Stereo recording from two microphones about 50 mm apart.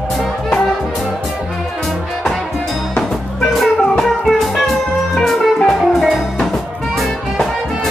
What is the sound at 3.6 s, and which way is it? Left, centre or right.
Music, centre.